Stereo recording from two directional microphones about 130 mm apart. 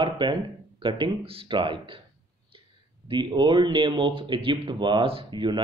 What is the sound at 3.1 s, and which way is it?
Speech, 40° right (ahead or behind).